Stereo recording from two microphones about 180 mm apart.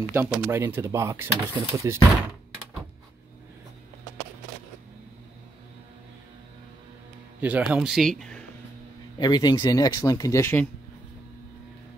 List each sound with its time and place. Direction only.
0.1 s speech: 15° right (ahead or behind)
7.3 s speech: 10° right (ahead or behind)
9.2 s speech: 20° left (ahead or behind)